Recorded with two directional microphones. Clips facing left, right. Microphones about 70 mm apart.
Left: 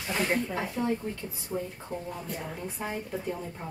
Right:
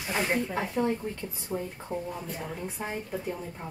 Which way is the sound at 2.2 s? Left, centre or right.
Centre.